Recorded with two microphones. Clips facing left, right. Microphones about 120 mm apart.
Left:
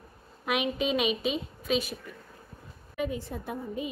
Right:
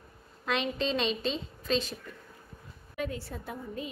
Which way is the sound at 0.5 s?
10° left (ahead or behind).